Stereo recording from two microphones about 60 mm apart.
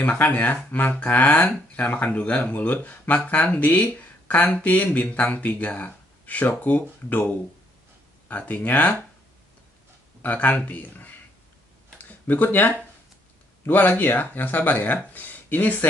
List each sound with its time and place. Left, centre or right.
0.0 s speech: left
8.3 s speech: left
10.2 s speech: left
12.0 s a sound: left
13.7 s speech: left